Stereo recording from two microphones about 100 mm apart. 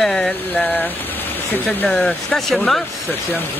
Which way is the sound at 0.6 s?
20° left (ahead or behind).